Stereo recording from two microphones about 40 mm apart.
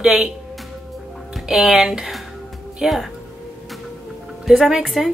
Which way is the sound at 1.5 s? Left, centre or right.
Centre.